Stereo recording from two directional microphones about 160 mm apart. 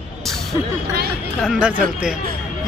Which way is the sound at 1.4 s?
5° right (ahead or behind).